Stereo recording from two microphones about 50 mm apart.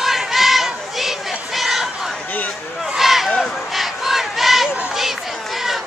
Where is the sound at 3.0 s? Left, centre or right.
Centre.